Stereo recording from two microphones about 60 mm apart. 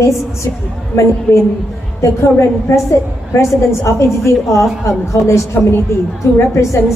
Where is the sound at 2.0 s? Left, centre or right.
Left.